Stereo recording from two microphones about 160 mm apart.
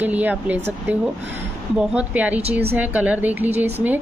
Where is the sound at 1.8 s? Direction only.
10° right (ahead or behind).